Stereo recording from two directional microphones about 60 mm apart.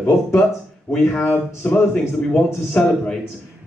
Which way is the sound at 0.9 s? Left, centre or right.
Centre.